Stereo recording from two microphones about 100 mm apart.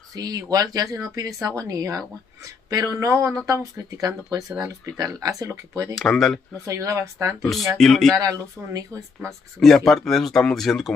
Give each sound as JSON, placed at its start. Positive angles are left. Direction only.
{"t": 0.1, "sound": "speech", "side_deg": -40}
{"t": 5.9, "sound": "speech", "side_deg": 0}
{"t": 6.6, "sound": "speech", "side_deg": -35}
{"t": 7.4, "sound": "speech", "side_deg": 0}
{"t": 8.2, "sound": "speech", "side_deg": -35}
{"t": 9.6, "sound": "speech", "side_deg": 5}